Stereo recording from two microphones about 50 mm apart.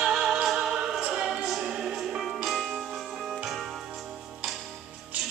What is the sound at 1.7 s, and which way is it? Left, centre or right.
Music, centre.